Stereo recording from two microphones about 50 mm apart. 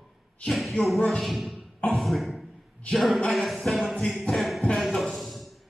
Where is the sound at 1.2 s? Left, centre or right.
Centre.